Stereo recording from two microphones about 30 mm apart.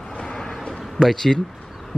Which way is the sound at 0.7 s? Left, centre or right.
Centre.